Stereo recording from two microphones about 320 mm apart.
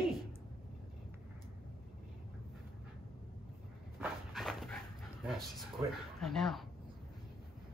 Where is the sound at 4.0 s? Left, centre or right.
Centre.